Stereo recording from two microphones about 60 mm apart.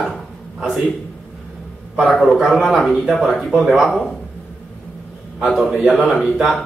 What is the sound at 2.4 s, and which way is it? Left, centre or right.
Speech, centre.